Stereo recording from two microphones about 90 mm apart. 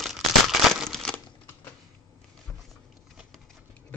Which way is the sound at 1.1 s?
25° left (ahead or behind).